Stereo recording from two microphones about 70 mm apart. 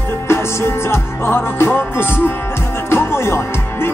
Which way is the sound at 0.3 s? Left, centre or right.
Left.